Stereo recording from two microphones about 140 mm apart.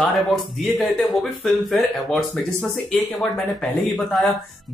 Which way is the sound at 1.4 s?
Centre (ahead or behind).